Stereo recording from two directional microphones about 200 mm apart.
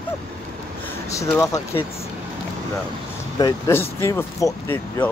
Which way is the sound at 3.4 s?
15° left (ahead or behind).